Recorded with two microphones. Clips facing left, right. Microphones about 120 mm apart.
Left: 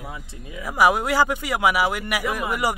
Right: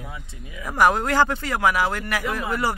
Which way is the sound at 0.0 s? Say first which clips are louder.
Left 2 dB; 30° left (ahead or behind).